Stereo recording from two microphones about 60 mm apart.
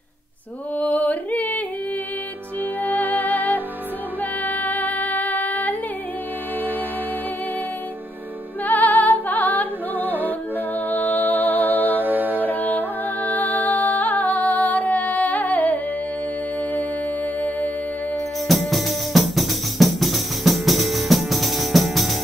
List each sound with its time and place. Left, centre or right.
0.7 s yodeling: left
2.8 s music: left
8.6 s music: left
12.0 s music: right
12.4 s music: left
18.5 s music: centre